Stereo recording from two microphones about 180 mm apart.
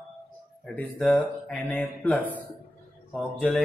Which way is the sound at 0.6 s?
5° left (ahead or behind).